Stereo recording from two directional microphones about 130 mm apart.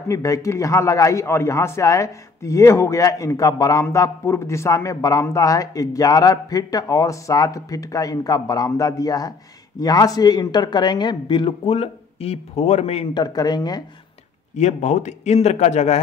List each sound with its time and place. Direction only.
0.1 s a man's voice: 25° left (ahead or behind)
11.6 s speech: 50° left (ahead or behind)
13.1 s speech: 30° left (ahead or behind)
14.6 s speech: 60° left (ahead or behind)